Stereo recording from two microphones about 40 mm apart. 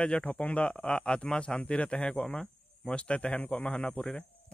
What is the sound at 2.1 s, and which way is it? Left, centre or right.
A man's voice, centre.